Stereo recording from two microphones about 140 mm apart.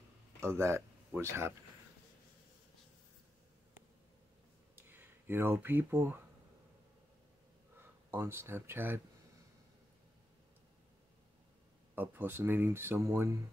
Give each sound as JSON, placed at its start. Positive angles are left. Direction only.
{"t": 0.6, "sound": "speech", "side_deg": -20}
{"t": 4.7, "sound": "speech", "side_deg": -15}
{"t": 8.1, "sound": "speech", "side_deg": -15}
{"t": 11.9, "sound": "speech", "side_deg": -15}